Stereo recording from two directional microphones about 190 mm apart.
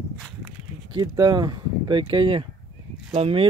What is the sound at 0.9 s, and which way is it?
Speech, 25° right (ahead or behind).